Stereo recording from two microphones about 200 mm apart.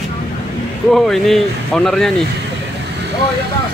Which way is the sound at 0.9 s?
Centre (ahead or behind).